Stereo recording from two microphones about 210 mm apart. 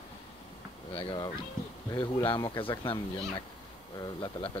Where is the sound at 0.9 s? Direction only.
20° left (ahead or behind).